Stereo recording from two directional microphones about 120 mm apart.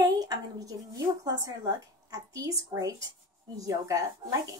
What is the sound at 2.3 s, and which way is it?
A woman's voice, 30° right (ahead or behind).